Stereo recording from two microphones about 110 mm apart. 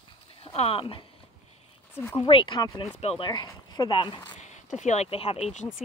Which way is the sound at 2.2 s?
50° left (ahead or behind).